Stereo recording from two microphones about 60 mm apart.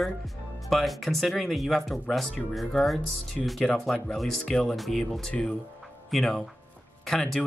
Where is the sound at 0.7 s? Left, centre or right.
Centre.